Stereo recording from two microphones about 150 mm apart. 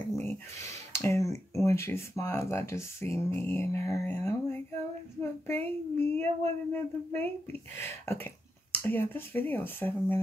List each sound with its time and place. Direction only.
0.1 s speech: 15° left (ahead or behind)
5.2 s a sound: 15° left (ahead or behind)
6.7 s speech: 15° left (ahead or behind)